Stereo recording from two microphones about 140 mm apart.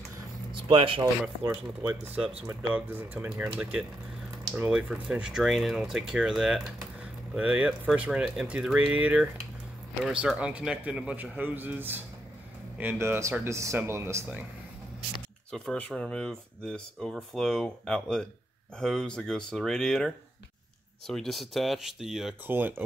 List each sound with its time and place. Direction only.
0.5 s a sound: 40° right (ahead or behind)
1.4 s speech: 10° right (ahead or behind)
4.6 s speech: 5° right (ahead or behind)
15.5 s speech: 5° left (ahead or behind)
21.1 s speech: centre (ahead or behind)
22.5 s speech: 15° right (ahead or behind)